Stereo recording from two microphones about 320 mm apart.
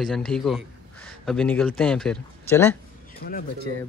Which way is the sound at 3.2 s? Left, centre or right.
Left.